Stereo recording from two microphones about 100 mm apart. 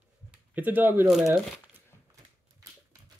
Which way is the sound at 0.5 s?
20° right (ahead or behind).